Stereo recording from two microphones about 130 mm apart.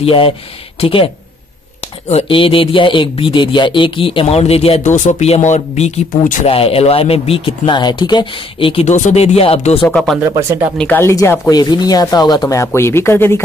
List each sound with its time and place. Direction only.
0.0 s speech: 45° left (ahead or behind); by 6.4 s 75° left (ahead or behind)
6.4 s speech: 45° left (ahead or behind)
8.8 s speech: 65° left (ahead or behind); by 9.8 s 50° left (ahead or behind)
9.8 s speech: 5° left (ahead or behind)
10.3 s speech: 25° right (ahead or behind)
10.8 s speech: 15° left (ahead or behind)